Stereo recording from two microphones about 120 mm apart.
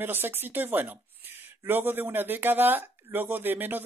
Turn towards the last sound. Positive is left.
turn(degrees=-15)  # may be behind; listen again after turning